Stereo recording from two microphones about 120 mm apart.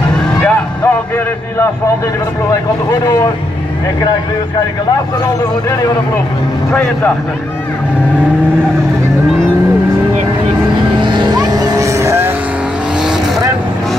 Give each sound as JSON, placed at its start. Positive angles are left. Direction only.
{"t": 0.4, "sound": "music", "side_deg": 15}
{"t": 2.5, "sound": "speech", "side_deg": 30}
{"t": 11.0, "sound": "vehicle", "side_deg": -40}